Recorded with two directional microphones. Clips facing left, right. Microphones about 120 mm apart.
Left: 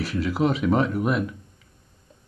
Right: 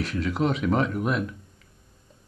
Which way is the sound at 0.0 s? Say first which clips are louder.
Left 2 dB; centre (ahead or behind).